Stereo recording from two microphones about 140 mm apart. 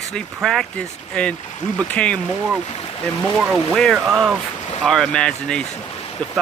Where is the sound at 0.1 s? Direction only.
Centre (ahead or behind).